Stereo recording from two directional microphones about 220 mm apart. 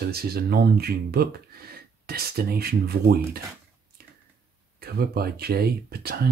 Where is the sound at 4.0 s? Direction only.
45° right (ahead or behind).